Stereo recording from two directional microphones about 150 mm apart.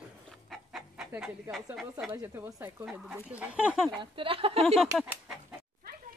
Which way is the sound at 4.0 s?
35° right (ahead or behind).